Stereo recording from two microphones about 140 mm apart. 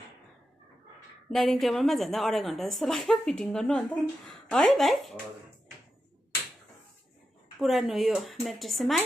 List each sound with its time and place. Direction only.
1.3 s speech: centre (ahead or behind)
7.6 s speech: centre (ahead or behind)